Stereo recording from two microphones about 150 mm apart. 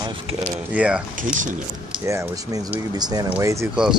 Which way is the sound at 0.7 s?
10° right (ahead or behind).